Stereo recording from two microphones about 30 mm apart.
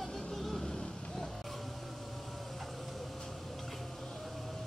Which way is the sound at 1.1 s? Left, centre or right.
Centre.